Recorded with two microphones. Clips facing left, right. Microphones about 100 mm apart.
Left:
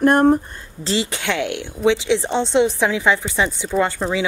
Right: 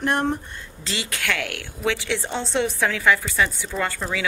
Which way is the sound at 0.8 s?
30° left (ahead or behind).